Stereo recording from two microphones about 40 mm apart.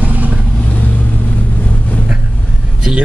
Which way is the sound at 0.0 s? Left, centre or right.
Right.